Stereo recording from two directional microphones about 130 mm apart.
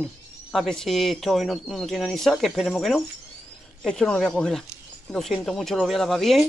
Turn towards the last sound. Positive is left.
turn(degrees=0)  # may be behind; listen again after turning